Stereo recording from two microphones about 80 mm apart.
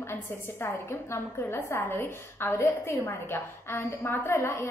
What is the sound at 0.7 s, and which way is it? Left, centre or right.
A woman's voice, left.